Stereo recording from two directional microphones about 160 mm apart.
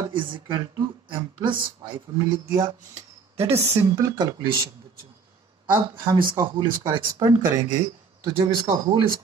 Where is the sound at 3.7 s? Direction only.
20° right (ahead or behind).